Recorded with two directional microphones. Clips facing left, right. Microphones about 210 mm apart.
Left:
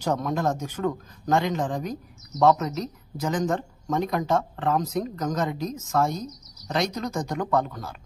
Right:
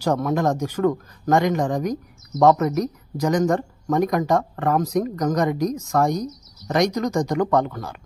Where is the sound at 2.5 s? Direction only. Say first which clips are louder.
Right 5 dB; 60° right (ahead or behind).